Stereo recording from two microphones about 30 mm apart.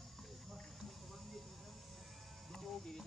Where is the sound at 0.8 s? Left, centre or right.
Centre.